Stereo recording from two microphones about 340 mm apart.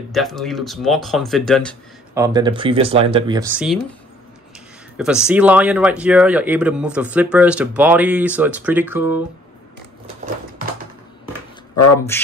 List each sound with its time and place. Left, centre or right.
0.1 s speech: centre
2.1 s speech: centre
4.9 s speech: centre
11.7 s speech: left